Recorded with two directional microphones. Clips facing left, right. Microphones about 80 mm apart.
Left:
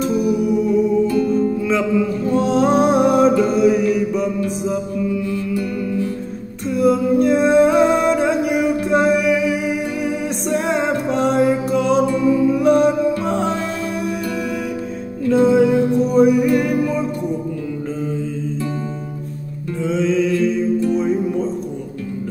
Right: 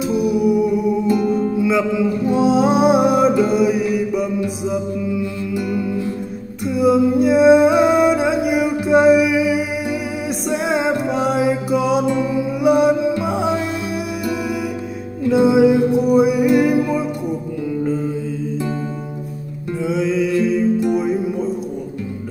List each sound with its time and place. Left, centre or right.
0.7 s music: centre
1.6 s music: centre
5.3 s music: centre
19.7 s music: centre